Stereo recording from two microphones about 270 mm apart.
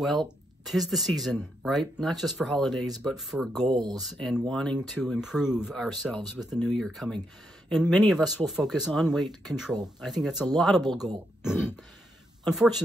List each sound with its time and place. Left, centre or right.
0.0 s speech: centre
3.6 s speech: centre
4.0 s speech: centre
11.4 s a sound: centre
12.5 s speech: centre